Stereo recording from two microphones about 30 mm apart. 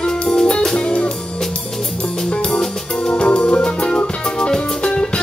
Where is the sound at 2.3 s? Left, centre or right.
Left.